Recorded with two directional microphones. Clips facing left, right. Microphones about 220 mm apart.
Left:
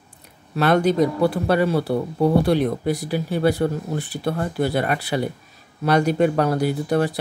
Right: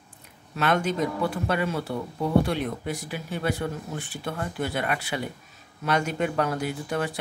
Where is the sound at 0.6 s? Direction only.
35° left (ahead or behind).